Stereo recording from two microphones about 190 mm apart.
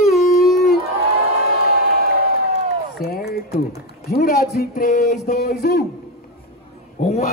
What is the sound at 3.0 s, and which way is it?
A man's voice, 55° left (ahead or behind).